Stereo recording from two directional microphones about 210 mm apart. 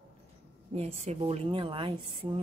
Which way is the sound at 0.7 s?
30° right (ahead or behind).